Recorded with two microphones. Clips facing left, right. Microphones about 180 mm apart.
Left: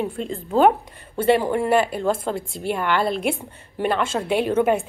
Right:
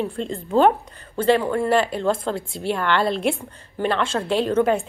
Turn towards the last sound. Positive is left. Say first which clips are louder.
# even
turn(degrees=10)  # may be behind; listen again after turning